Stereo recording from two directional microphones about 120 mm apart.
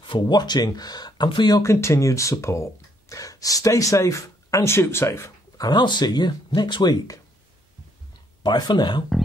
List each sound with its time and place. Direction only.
0.0 s speech: 40° left (ahead or behind)
1.6 s speech: 25° left (ahead or behind)
5.7 s speech: 40° left (ahead or behind)
8.4 s speech: 35° left (ahead or behind)